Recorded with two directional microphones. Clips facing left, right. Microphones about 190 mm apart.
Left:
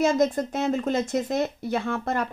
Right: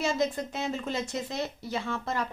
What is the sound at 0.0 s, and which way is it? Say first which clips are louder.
Speech: left 7 dB; 45° left (ahead or behind).